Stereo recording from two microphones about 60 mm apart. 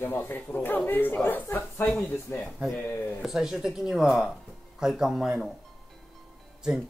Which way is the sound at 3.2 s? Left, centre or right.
Centre.